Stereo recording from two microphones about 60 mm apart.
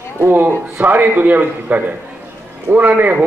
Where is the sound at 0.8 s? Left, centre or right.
Right.